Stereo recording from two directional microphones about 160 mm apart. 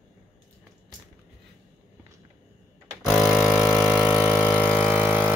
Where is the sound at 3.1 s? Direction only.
Centre (ahead or behind).